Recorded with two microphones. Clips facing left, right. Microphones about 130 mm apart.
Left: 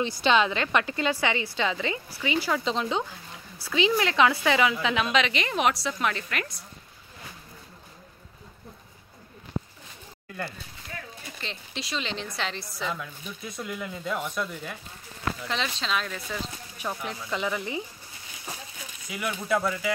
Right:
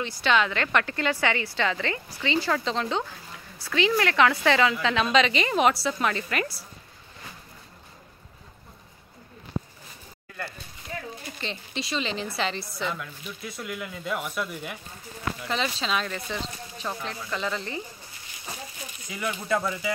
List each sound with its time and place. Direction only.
0.0 s a woman's voice: 20° left (ahead or behind)
5.0 s speech: centre (ahead or behind)
11.4 s speech: centre (ahead or behind)
15.4 s speech: 5° right (ahead or behind)
16.7 s a woman's voice: 15° left (ahead or behind)
19.0 s speech: 5° left (ahead or behind)